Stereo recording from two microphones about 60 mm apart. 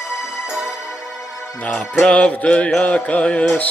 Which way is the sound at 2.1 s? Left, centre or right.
Centre.